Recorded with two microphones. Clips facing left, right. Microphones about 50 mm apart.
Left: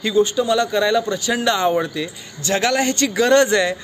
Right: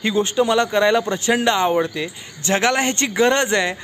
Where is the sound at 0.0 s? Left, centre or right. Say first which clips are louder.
Left 1 dB; right.